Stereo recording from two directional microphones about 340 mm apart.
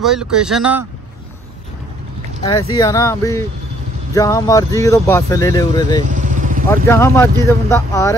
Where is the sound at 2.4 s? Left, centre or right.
Centre.